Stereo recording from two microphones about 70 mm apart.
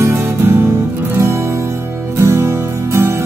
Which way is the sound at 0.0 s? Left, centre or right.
Right.